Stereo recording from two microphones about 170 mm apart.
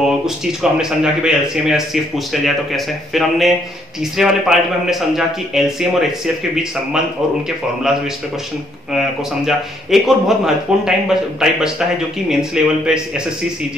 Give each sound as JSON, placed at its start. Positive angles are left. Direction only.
{"t": 0.0, "sound": "speech", "side_deg": -5}
{"t": 8.9, "sound": "speech", "side_deg": 0}